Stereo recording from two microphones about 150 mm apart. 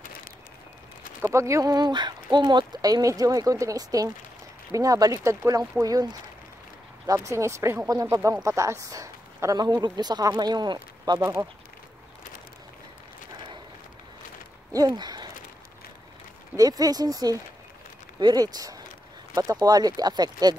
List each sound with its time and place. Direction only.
1.2 s speech: 20° right (ahead or behind)
7.1 s speech: 20° right (ahead or behind)
14.7 s a sound: 25° right (ahead or behind)
16.5 s speech: 25° right (ahead or behind)